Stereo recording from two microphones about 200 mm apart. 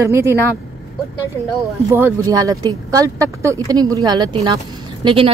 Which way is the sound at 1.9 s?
15° right (ahead or behind).